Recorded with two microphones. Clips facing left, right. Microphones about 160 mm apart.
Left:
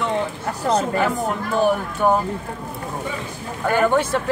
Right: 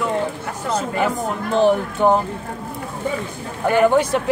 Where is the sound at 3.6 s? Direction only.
15° right (ahead or behind).